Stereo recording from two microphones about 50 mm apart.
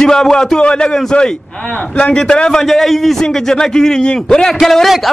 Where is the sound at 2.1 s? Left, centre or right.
Centre.